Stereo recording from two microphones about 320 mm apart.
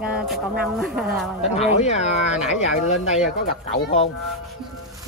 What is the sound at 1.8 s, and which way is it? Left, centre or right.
Speech, left.